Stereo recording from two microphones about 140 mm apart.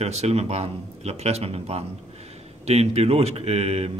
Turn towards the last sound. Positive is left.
turn(degrees=-50)  # may be behind; listen again after turning